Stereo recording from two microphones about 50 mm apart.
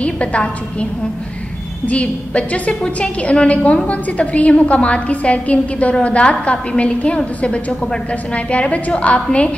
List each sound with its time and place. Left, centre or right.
0.0 s a woman's voice: left
1.9 s a woman's voice: left